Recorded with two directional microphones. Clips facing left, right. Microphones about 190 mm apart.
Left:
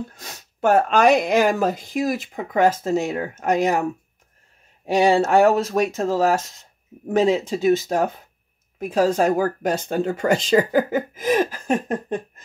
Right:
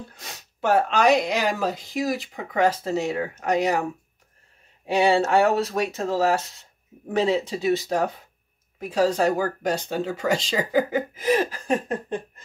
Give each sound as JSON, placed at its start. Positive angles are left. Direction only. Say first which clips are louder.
{"t": 0.1, "sound": "speech", "louder": "left 2 dB", "side_deg": 45}
{"t": 4.8, "sound": "speech", "louder": "left 3 dB", "side_deg": 40}